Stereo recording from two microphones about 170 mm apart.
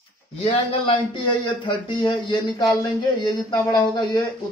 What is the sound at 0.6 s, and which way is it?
Speech, 30° left (ahead or behind).